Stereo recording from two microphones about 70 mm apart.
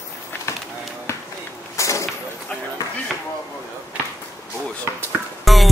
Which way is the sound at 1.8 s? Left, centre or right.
Left.